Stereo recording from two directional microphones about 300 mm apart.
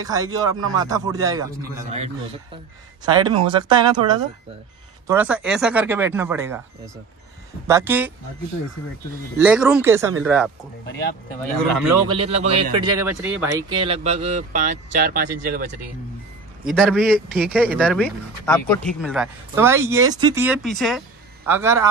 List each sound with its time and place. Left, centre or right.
0.0 s speech: centre
3.1 s speech: centre
7.6 s speech: centre
9.4 s speech: centre
12.1 s speech: centre
16.6 s speech: centre